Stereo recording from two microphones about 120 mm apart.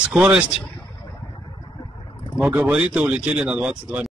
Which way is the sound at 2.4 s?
10° right (ahead or behind).